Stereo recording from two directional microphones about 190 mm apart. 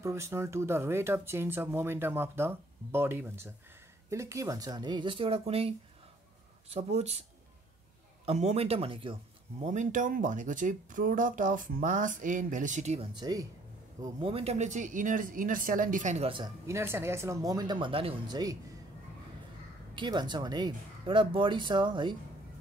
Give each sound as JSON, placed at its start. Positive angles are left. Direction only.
{"t": 0.0, "sound": "speech", "side_deg": -15}
{"t": 6.7, "sound": "speech", "side_deg": -35}
{"t": 8.3, "sound": "speech", "side_deg": -35}
{"t": 9.6, "sound": "speech", "side_deg": -40}
{"t": 13.1, "sound": "speech", "side_deg": -20}
{"t": 16.6, "sound": "speech", "side_deg": -15}
{"t": 20.0, "sound": "speech", "side_deg": -25}